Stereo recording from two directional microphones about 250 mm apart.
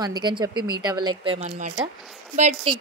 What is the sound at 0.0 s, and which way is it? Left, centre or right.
Speech, centre.